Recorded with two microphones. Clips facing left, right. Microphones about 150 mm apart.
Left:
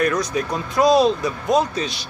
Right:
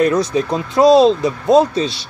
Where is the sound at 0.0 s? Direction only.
25° right (ahead or behind).